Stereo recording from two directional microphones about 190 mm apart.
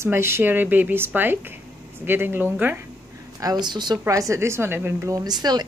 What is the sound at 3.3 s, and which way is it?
Speech, 20° right (ahead or behind).